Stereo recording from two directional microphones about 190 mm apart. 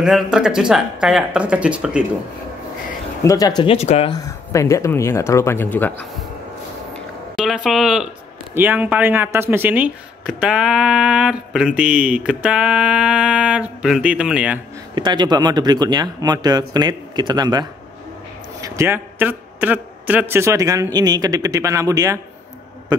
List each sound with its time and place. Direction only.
0.0 s speech: 5° right (ahead or behind)
3.3 s speech: 20° left (ahead or behind)
4.1 s speech: 15° left (ahead or behind)
7.3 s speech: centre (ahead or behind)
15.0 s speech: 25° right (ahead or behind)